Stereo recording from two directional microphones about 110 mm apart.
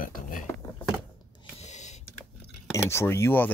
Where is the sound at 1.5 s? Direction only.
90° left.